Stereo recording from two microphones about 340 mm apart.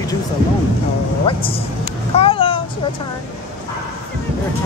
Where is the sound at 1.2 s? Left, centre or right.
Centre.